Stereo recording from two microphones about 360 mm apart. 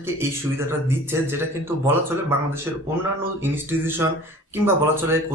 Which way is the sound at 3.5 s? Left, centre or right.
Centre.